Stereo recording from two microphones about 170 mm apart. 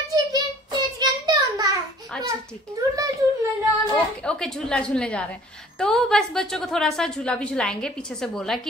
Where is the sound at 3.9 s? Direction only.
5° left (ahead or behind).